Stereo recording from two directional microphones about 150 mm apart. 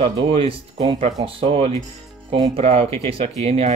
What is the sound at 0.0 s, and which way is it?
Speech, 40° right (ahead or behind).